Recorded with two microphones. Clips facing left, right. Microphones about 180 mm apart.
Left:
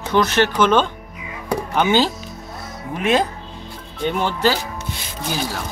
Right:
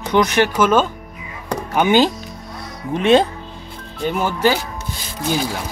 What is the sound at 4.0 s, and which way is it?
Speech, 5° right (ahead or behind).